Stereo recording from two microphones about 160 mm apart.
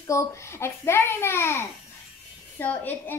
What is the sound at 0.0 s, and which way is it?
A child's voice, 20° left (ahead or behind).